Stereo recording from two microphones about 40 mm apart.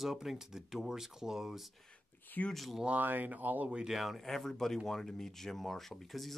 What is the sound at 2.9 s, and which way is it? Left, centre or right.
Speech, right.